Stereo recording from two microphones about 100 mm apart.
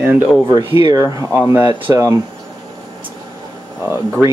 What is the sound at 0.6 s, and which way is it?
Speech, 40° right (ahead or behind).